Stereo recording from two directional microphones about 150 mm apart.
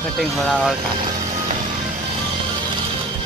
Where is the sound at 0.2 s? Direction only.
Centre (ahead or behind).